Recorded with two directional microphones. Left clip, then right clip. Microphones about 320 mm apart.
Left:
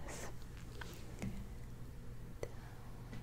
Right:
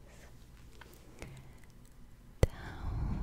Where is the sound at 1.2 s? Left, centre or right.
Centre.